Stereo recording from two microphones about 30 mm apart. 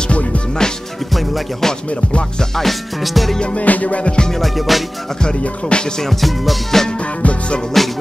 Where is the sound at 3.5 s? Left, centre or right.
Left.